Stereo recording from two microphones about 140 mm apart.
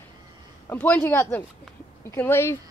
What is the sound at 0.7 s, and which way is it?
A woman's voice, 15° left (ahead or behind).